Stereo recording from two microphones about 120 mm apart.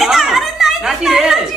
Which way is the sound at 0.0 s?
Centre (ahead or behind).